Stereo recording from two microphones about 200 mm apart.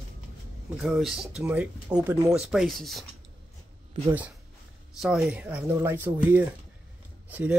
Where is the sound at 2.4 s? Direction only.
Centre (ahead or behind).